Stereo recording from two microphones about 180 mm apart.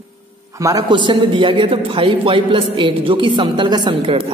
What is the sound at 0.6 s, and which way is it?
A man's voice, 20° right (ahead or behind).